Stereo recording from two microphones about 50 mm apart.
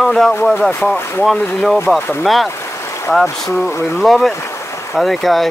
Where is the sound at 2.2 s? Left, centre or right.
Centre.